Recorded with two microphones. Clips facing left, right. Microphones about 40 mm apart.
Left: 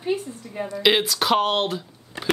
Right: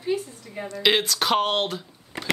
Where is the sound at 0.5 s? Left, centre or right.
Centre.